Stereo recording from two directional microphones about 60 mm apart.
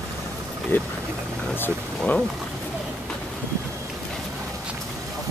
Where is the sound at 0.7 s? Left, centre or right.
Left.